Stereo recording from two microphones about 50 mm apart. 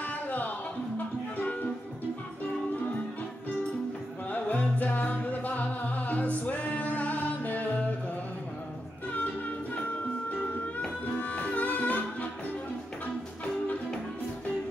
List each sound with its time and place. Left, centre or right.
0.0 s music: left
2.7 s music: left
4.3 s music: left
11.1 s music: left